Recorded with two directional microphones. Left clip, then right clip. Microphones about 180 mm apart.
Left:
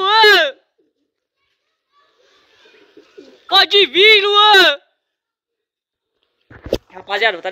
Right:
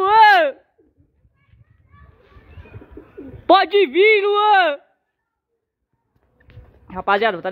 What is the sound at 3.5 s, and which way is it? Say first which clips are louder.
Speech: left 3 dB; 5° left (ahead or behind).